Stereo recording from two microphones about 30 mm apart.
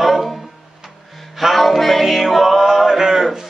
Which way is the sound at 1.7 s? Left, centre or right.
Centre.